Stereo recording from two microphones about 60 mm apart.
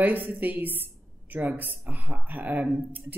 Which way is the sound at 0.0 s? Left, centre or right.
Right.